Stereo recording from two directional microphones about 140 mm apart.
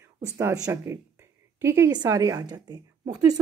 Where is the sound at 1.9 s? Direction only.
30° right (ahead or behind).